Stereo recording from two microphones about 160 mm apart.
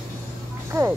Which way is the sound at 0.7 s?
20° right (ahead or behind).